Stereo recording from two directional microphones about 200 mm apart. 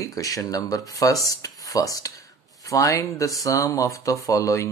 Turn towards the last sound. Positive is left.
turn(degrees=15)  # may be behind; listen again after turning